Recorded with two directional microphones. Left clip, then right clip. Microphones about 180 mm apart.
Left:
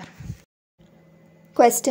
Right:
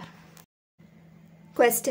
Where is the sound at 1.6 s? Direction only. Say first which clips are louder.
Left 5 dB; 25° left (ahead or behind).